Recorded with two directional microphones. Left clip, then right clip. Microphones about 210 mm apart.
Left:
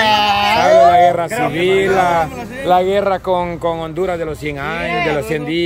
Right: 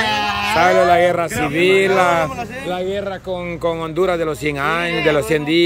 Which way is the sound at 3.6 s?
10° right (ahead or behind).